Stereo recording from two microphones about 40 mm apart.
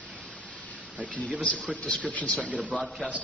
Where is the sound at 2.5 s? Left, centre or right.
Right.